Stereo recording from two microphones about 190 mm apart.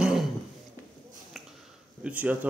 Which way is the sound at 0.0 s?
Centre (ahead or behind).